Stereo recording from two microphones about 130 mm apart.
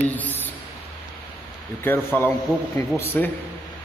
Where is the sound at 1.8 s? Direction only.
15° left (ahead or behind).